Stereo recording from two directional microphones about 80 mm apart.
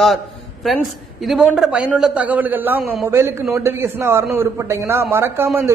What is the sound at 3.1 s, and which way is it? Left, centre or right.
A man's voice, right.